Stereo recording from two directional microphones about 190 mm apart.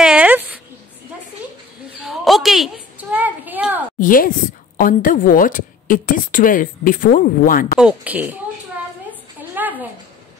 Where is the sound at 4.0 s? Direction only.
45° left (ahead or behind).